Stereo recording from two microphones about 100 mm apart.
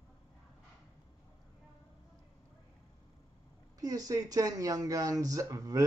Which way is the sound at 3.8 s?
35° right (ahead or behind).